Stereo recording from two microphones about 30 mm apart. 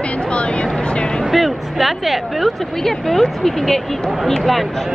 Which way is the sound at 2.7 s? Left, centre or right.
Centre.